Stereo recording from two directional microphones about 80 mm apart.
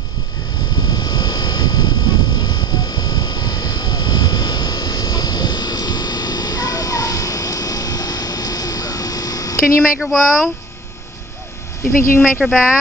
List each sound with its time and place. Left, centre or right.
0.8 s vehicle: left
9.9 s speech: centre
12.4 s speech: centre